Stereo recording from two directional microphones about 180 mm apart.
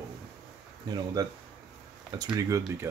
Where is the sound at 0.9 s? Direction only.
20° right (ahead or behind).